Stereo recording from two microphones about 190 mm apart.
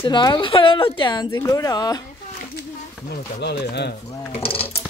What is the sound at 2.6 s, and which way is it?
Speech, 55° left (ahead or behind).